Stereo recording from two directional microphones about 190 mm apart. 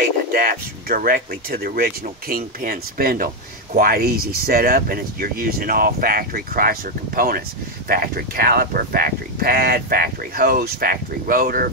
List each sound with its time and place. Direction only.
0.3 s speech: 50° right (ahead or behind)